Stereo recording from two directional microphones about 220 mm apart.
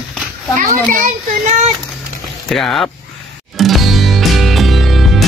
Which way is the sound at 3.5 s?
Centre (ahead or behind).